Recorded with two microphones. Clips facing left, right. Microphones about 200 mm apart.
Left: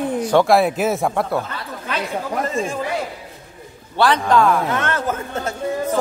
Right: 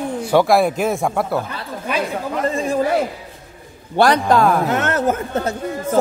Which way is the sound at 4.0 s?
40° right (ahead or behind).